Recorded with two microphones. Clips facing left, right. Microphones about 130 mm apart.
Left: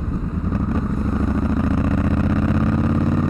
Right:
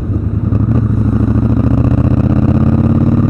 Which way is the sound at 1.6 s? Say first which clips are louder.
Right 7 dB; 25° right (ahead or behind).